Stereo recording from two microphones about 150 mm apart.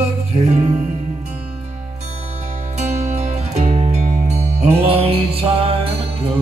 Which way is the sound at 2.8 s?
50° right (ahead or behind).